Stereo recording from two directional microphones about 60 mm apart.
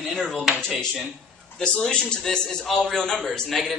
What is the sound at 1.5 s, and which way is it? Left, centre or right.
A man's voice, centre.